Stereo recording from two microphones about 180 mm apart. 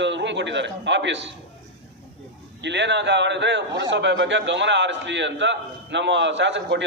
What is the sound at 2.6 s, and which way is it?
A man's voice, 75° right (ahead or behind).